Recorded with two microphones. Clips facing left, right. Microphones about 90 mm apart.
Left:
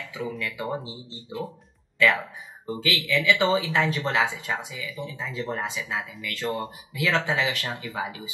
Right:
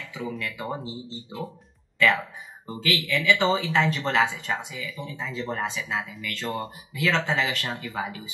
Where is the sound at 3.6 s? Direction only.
10° left (ahead or behind).